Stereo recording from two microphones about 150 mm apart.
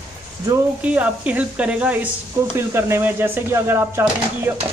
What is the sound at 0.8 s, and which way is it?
Speech, 10° right (ahead or behind).